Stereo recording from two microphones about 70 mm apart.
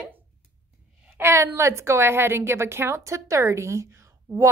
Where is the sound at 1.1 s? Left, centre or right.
Right.